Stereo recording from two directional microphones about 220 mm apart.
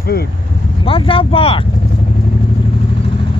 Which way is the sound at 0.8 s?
25° left (ahead or behind).